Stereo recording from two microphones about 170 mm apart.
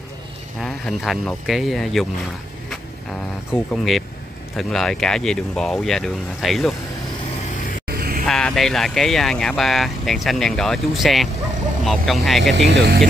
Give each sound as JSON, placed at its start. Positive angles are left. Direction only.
{"t": 0.6, "sound": "speech", "side_deg": 0}
{"t": 3.7, "sound": "speech", "side_deg": 0}
{"t": 7.5, "sound": "vehicle", "side_deg": 55}
{"t": 7.9, "sound": "a sound", "side_deg": -60}
{"t": 8.3, "sound": "speech", "side_deg": 5}
{"t": 12.5, "sound": "speech", "side_deg": -70}